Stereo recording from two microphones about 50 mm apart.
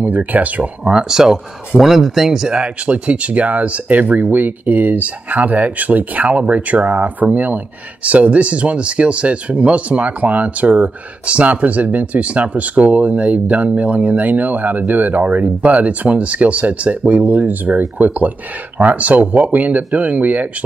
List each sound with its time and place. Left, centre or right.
0.0 s speech: right
0.8 s speech: centre
2.5 s speech: right